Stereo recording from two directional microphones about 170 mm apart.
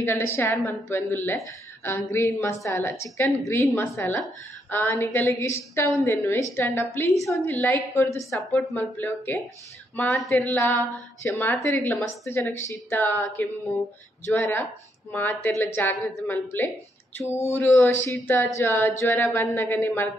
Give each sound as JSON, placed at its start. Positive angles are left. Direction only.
{"t": 0.0, "sound": "a woman's voice", "side_deg": 15}